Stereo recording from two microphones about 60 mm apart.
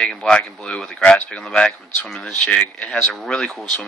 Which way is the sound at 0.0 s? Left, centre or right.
Centre.